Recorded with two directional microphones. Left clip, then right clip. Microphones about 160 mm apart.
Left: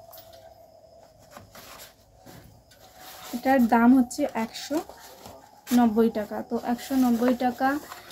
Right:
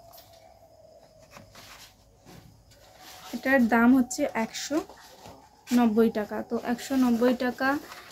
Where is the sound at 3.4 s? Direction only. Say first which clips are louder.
Left 2 dB; 15° right (ahead or behind).